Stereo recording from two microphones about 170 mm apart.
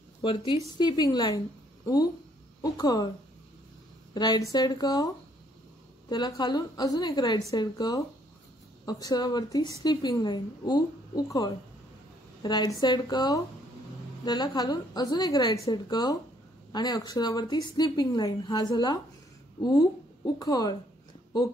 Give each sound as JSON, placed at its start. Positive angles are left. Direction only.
{"t": 0.2, "sound": "a woman's voice", "side_deg": 30}
{"t": 2.6, "sound": "a woman's voice", "side_deg": 25}
{"t": 4.1, "sound": "a woman's voice", "side_deg": 25}